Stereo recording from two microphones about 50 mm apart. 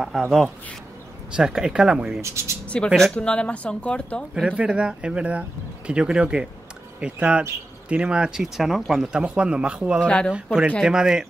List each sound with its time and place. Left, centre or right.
0.0 s speech: centre
2.2 s speech: right
2.7 s speech: left
4.5 s speech: right
8.3 s speech: centre
9.0 s speech: centre
9.9 s speech: left
10.8 s speech: centre